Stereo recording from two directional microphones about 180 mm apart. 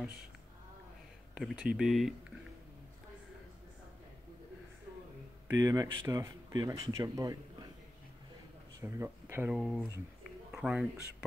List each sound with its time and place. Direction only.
1.3 s speech: 5° right (ahead or behind)
5.5 s speech: 20° right (ahead or behind)
8.8 s speech: 15° right (ahead or behind)